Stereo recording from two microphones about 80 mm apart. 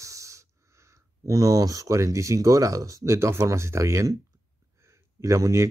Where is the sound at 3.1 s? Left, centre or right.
Right.